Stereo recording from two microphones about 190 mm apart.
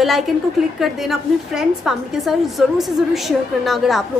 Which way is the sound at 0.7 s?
Centre (ahead or behind).